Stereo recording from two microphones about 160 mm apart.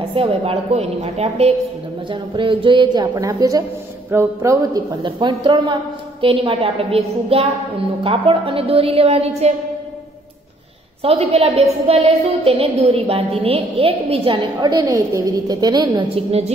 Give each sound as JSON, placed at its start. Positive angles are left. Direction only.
{"t": 0.1, "sound": "a woman's voice", "side_deg": -35}
{"t": 2.0, "sound": "a woman's voice", "side_deg": -30}
{"t": 5.0, "sound": "a woman's voice", "side_deg": -30}
{"t": 11.0, "sound": "a woman's voice", "side_deg": -40}